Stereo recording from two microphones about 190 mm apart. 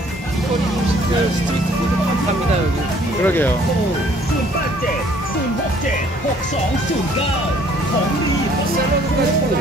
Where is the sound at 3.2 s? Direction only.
10° left (ahead or behind).